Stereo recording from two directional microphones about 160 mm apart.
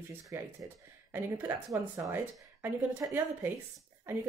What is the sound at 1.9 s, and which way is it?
Speech, 15° right (ahead or behind).